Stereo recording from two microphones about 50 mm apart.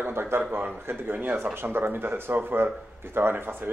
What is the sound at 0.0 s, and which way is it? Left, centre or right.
Speech, right.